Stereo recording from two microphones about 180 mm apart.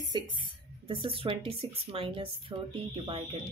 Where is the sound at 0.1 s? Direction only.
25° right (ahead or behind).